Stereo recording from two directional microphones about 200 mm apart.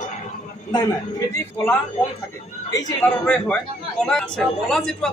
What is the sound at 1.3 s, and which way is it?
Speech, 10° left (ahead or behind).